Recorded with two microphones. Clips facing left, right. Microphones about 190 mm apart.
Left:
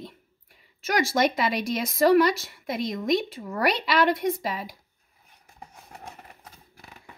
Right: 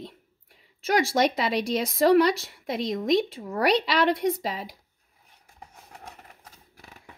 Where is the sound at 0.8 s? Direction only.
30° right (ahead or behind).